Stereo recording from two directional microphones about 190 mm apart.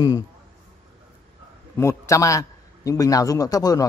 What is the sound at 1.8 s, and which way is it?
A man's voice, 15° left (ahead or behind).